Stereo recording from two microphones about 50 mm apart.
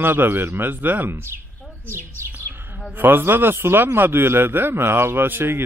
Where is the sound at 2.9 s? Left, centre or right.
Right.